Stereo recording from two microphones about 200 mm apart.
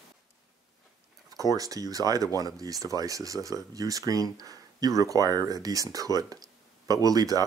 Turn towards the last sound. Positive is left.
turn(degrees=-20)  # may be behind; listen again after turning